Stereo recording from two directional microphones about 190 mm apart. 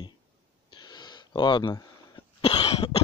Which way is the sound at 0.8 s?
20° left (ahead or behind).